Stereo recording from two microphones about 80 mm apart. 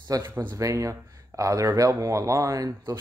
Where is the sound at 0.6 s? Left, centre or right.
Right.